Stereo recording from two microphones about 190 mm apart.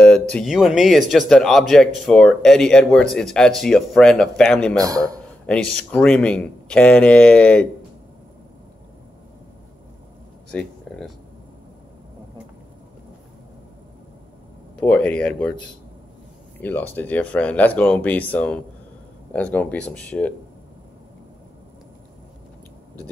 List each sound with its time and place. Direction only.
0.0 s speech: 5° left (ahead or behind)
4.7 s a man's voice: 20° right (ahead or behind)
5.5 s speech: 5° left (ahead or behind)
10.5 s a sound: 5° left (ahead or behind)
14.8 s speech: 5° left (ahead or behind)
16.5 s speech: 10° left (ahead or behind)